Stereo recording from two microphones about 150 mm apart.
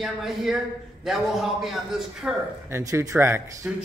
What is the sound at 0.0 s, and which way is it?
A man's voice, centre (ahead or behind).